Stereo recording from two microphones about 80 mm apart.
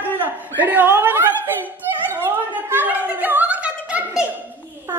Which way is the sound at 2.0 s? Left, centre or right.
Right.